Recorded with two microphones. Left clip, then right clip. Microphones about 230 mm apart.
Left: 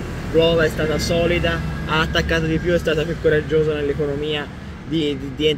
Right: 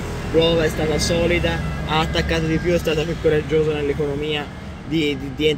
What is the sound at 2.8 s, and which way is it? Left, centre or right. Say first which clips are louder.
Speech: left 1 dB; centre.